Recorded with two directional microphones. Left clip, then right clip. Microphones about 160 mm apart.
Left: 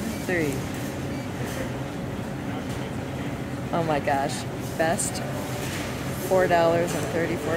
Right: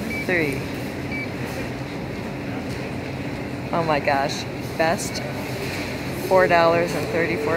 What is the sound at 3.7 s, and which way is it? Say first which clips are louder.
Speech: right 4 dB; 15° left (ahead or behind).